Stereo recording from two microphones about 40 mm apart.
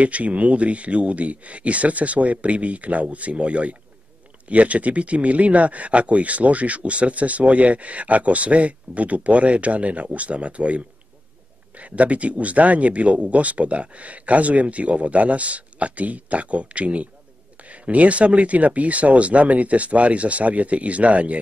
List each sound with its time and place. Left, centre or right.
0.0 s speech: right